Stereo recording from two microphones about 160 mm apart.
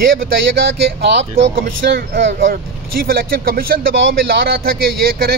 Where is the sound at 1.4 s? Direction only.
90° right.